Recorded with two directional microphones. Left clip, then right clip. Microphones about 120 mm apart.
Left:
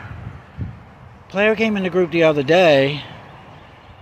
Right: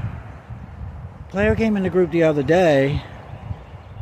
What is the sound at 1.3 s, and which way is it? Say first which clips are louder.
Speech: left 3 dB; 30° right (ahead or behind).